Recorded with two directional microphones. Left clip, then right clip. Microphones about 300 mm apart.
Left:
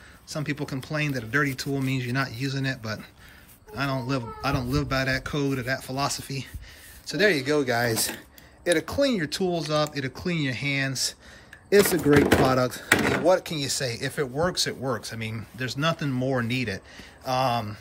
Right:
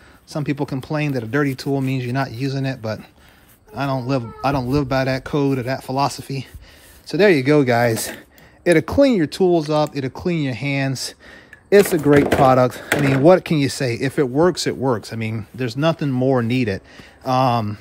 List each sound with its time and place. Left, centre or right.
0.3 s speech: centre